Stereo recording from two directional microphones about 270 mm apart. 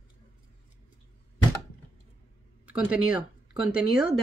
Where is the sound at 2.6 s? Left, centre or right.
Centre.